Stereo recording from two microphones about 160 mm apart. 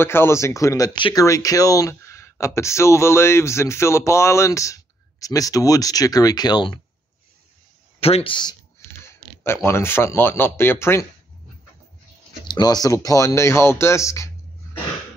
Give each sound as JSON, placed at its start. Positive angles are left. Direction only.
{"t": 0.0, "sound": "speech", "side_deg": 15}
{"t": 8.0, "sound": "speech", "side_deg": 35}
{"t": 12.4, "sound": "speech", "side_deg": 25}